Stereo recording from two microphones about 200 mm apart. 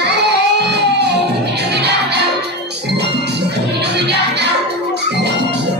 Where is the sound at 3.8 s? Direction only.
55° right (ahead or behind).